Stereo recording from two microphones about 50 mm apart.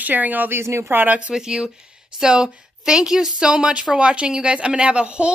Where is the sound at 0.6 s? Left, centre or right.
Right.